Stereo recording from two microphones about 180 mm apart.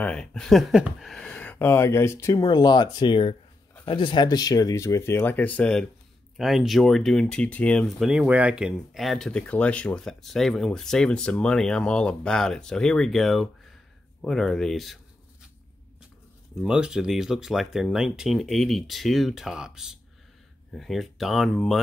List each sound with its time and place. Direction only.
0.0 s speech: 5° left (ahead or behind)
16.5 s speech: 5° right (ahead or behind)